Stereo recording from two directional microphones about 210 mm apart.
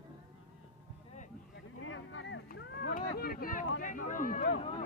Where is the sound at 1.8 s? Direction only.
70° left (ahead or behind).